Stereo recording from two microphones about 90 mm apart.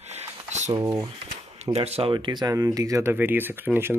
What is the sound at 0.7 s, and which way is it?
Speech, 55° right (ahead or behind).